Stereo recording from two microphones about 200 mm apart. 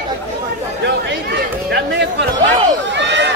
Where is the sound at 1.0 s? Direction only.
55° right (ahead or behind).